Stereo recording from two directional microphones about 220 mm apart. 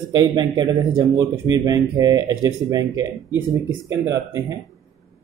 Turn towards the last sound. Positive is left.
turn(degrees=-15)  # may be behind; listen again after turning